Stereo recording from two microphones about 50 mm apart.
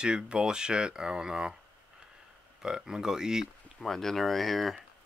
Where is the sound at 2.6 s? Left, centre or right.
Centre.